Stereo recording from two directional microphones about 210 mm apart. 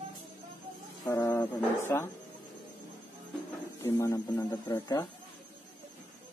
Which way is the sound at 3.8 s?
15° left (ahead or behind).